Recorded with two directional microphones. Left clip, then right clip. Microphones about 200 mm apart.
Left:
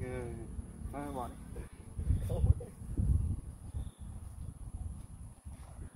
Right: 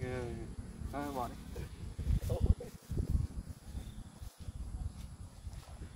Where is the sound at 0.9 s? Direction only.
25° right (ahead or behind).